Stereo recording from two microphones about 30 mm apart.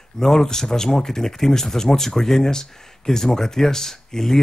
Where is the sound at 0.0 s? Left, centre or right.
Centre.